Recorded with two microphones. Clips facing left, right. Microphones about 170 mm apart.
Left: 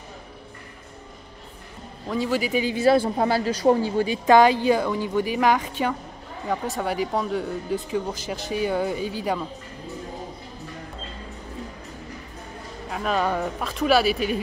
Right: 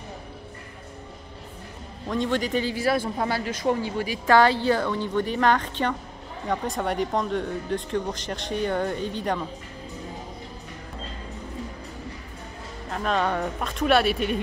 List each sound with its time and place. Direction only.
2.0 s a woman's voice: 5° left (ahead or behind)
2.7 s a woman's voice: 25° left (ahead or behind); by 9.5 s 5° left (ahead or behind)
12.9 s speech: 5° left (ahead or behind)